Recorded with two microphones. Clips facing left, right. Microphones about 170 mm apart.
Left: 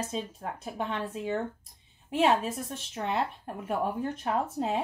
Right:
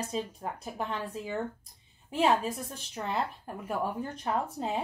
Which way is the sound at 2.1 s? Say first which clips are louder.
Left 1 dB; centre (ahead or behind).